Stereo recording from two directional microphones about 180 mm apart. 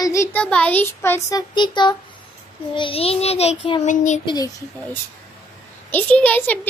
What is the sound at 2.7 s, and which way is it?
Child singing, 30° left (ahead or behind).